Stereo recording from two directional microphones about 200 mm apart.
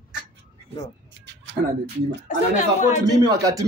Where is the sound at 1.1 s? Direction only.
60° right (ahead or behind).